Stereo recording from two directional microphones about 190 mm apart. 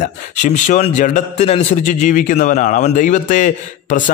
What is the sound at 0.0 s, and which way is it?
A man's voice, 40° left (ahead or behind).